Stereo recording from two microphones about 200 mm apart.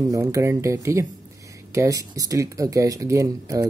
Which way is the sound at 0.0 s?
15° right (ahead or behind).